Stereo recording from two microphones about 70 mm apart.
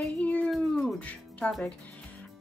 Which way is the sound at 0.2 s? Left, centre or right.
Left.